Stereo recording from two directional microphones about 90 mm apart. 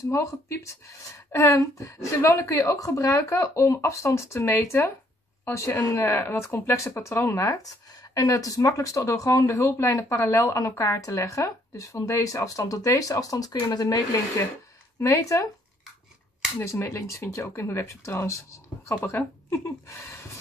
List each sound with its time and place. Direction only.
0.1 s speech: 30° left (ahead or behind)
7.9 s speech: 40° left (ahead or behind)
15.0 s speech: 35° left (ahead or behind)
16.6 s speech: 30° left (ahead or behind)